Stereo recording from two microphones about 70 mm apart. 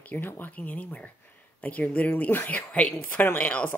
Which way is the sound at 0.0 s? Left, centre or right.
Left.